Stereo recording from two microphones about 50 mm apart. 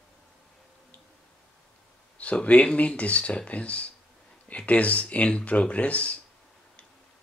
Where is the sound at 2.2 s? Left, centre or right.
Left.